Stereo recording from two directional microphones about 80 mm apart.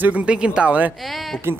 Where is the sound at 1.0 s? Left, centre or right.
Centre.